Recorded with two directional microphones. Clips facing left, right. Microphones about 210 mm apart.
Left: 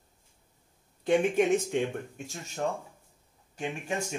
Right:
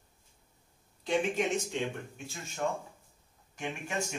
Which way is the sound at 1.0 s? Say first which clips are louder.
Left 6 dB; 55° left (ahead or behind).